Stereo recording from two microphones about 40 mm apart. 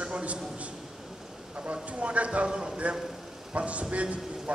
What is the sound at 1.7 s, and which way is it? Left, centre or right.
A man's voice, right.